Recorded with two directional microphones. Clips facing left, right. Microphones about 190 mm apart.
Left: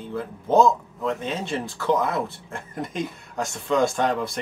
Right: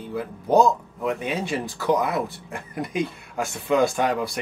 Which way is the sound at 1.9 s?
15° right (ahead or behind).